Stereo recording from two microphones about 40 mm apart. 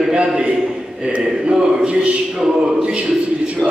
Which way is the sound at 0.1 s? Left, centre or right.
Right.